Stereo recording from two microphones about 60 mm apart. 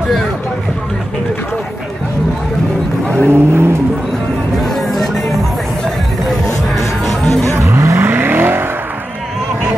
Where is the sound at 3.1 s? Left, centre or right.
Right.